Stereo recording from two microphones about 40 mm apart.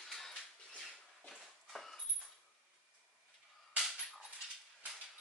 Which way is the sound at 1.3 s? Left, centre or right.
Centre.